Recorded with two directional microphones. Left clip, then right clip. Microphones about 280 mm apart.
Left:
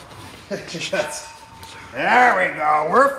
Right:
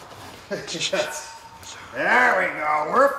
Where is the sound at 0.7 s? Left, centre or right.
Centre.